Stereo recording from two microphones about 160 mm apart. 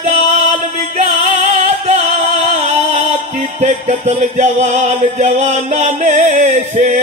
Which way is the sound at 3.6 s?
45° right (ahead or behind).